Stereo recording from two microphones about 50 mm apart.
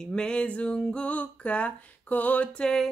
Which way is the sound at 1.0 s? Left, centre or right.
Left.